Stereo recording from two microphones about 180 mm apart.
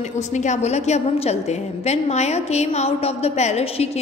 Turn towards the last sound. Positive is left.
turn(degrees=35)  # may be behind; listen again after turning